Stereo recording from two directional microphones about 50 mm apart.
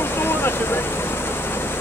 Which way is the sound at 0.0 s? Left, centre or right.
Left.